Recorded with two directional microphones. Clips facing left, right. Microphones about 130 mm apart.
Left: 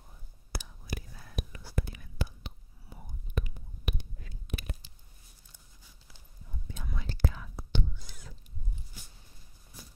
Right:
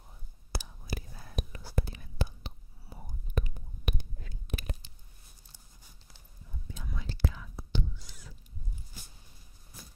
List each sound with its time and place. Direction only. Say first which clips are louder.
0.5 s whispering: right 1 dB; 30° right (ahead or behind)
6.7 s whispering: left 1 dB; 65° left (ahead or behind)